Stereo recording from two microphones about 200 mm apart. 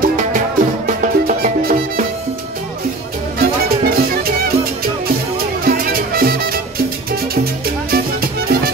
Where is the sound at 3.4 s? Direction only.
50° right (ahead or behind).